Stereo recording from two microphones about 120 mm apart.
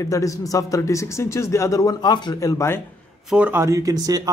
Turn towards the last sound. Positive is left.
turn(degrees=-30)  # may be behind; listen again after turning